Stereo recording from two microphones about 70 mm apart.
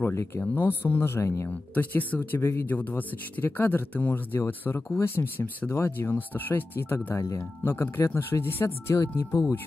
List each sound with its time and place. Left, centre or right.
0.0 s speech: left
1.5 s speech: left
2.6 s speech: left
9.3 s speech: left